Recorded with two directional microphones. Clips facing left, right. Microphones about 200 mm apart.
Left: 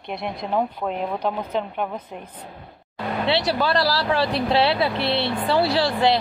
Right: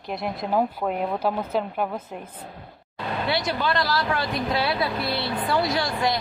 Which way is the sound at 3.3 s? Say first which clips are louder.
Left 4 dB; 35° left (ahead or behind).